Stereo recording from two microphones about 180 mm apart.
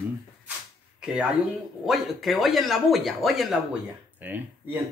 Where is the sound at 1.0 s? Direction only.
5° right (ahead or behind).